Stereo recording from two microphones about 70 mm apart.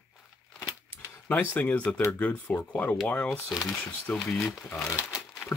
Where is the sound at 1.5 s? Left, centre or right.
Left.